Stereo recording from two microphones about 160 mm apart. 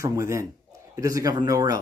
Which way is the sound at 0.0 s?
20° right (ahead or behind).